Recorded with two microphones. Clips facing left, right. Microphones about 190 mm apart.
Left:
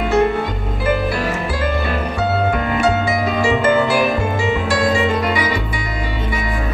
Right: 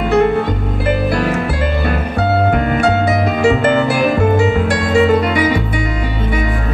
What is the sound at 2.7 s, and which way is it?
Music, 65° right (ahead or behind).